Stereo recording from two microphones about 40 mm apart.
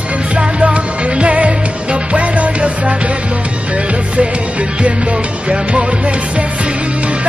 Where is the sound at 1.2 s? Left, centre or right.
Right.